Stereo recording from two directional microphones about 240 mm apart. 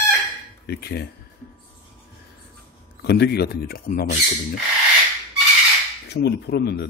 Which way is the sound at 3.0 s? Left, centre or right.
Left.